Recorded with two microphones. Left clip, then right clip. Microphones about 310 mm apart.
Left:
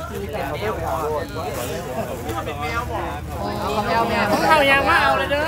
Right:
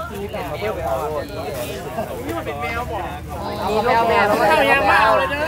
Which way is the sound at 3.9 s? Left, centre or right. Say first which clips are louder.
Right 4 dB; right.